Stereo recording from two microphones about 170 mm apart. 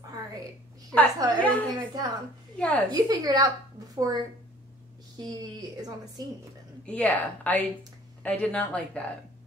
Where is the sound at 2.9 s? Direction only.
20° right (ahead or behind).